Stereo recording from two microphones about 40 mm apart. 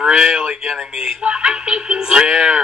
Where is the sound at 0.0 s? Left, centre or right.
Right.